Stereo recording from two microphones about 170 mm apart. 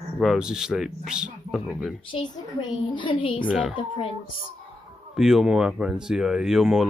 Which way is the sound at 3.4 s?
5° right (ahead or behind).